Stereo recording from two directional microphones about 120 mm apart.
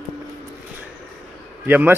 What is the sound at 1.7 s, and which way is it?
Speech, 15° right (ahead or behind).